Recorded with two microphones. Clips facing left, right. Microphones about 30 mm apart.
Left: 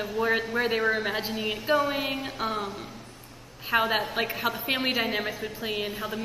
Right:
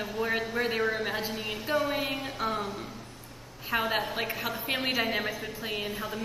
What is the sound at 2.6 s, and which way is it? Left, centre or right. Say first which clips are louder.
Speech: left 1 dB; centre.